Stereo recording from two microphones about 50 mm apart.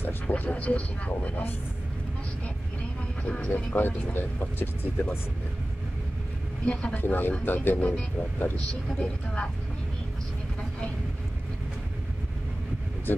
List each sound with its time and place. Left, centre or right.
0.3 s speech: left
3.3 s speech: left
3.5 s speech: left
6.6 s speech: centre
6.9 s speech: left
9.0 s speech: left